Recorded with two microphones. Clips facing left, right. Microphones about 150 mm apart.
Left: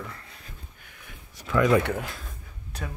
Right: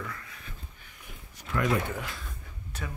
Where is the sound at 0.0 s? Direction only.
30° left (ahead or behind).